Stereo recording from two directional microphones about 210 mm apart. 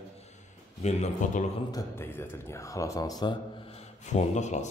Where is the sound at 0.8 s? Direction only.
30° left (ahead or behind).